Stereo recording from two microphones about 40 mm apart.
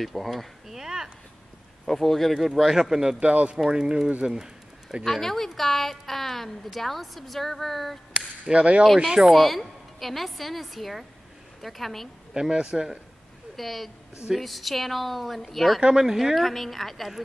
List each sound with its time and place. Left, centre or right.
0.0 s a woman's voice: centre
0.7 s a sound: centre
1.9 s a woman's voice: centre
3.2 s speech: right
3.5 s a man's voice: centre
5.0 s a woman's voice: centre
8.1 s a sound: right
9.0 s speech: centre
9.3 s a woman's voice: centre
12.4 s a man's voice: centre
13.6 s a woman's voice: centre
15.8 s speech: centre
16.3 s a woman's voice: centre